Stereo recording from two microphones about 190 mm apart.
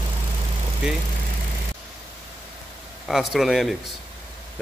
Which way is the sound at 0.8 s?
5° right (ahead or behind).